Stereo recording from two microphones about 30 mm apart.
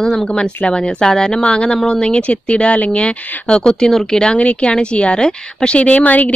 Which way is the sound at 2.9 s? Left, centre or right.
Left.